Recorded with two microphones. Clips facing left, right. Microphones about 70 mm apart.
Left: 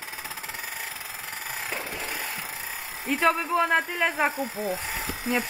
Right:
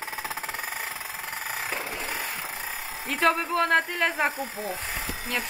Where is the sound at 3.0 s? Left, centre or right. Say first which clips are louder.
Left 1 dB; centre.